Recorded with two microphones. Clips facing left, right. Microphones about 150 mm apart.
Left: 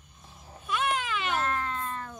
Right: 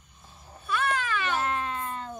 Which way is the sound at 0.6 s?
15° left (ahead or behind).